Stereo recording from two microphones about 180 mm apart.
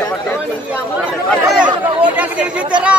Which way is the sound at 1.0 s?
5° right (ahead or behind).